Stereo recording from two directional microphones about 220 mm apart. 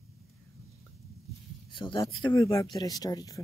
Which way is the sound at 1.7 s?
20° left (ahead or behind).